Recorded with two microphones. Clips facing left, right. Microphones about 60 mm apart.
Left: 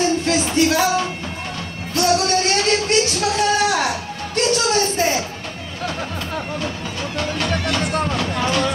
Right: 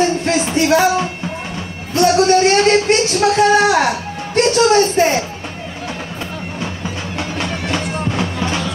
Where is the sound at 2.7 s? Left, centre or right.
Right.